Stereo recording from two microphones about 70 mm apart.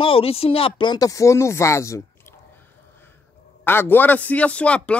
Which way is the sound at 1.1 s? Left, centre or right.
Left.